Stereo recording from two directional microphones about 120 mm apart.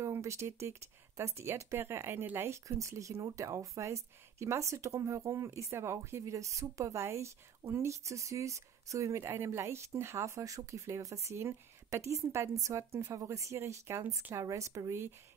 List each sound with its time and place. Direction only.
0.0 s speech: 25° right (ahead or behind)